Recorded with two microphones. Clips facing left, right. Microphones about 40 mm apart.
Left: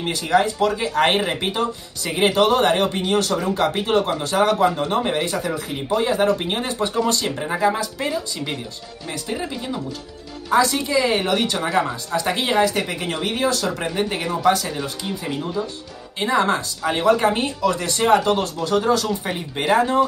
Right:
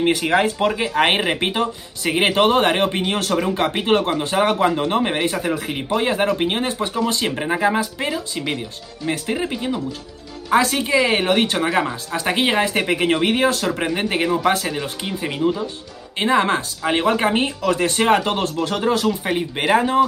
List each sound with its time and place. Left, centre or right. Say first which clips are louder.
0.0 s speech: right 2 dB; right
3.4 s speech: right 2 dB; right
9.1 s speech: right 4 dB; right
11.5 s speech: right 1 dB; right
12.2 s speech: even; right